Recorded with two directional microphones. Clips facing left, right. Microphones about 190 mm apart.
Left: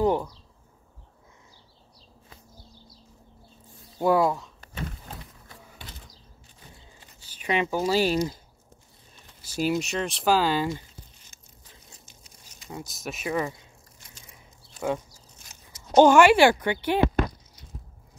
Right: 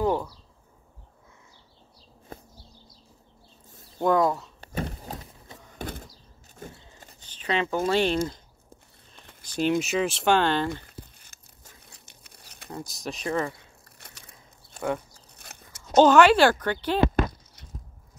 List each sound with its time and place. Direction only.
0.0 s speech: 20° left (ahead or behind)
2.3 s a sound: 50° right (ahead or behind)
4.0 s speech: 5° left (ahead or behind)
4.6 s a sound: 40° right (ahead or behind)
5.8 s mechanisms: 50° right (ahead or behind)
6.6 s a sound: 50° right (ahead or behind)
7.2 s speech: 10° left (ahead or behind)
9.4 s speech: 5° left (ahead or behind)
10.7 s crumpling: 60° right (ahead or behind)
12.7 s speech: centre (ahead or behind)
13.9 s crushing: 65° right (ahead or behind)
15.0 s a sound: 60° right (ahead or behind)
15.9 s speech: 15° left (ahead or behind)